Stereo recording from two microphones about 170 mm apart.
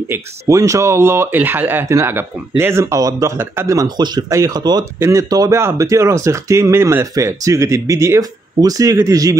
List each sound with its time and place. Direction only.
0.1 s speech: 20° right (ahead or behind)